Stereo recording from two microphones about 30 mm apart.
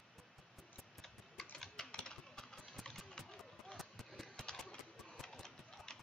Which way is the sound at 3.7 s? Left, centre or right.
Centre.